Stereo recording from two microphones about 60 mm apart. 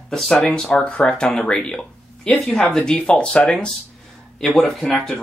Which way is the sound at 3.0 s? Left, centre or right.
Left.